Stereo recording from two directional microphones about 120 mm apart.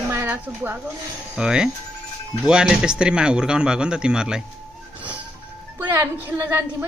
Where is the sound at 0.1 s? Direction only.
20° right (ahead or behind).